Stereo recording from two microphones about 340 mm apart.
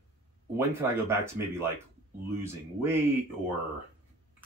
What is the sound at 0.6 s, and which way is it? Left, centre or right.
Speech, centre.